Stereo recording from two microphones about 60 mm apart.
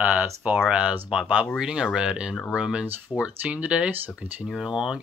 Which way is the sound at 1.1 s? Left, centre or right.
Centre.